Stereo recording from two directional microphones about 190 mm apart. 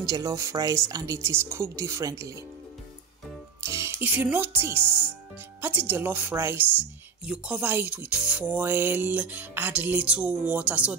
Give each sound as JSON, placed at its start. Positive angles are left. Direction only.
{"t": 0.0, "sound": "a woman's voice", "side_deg": -20}
{"t": 3.6, "sound": "a woman's voice", "side_deg": -15}